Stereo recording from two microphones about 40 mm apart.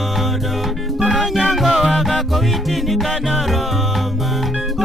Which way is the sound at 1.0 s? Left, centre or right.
Centre.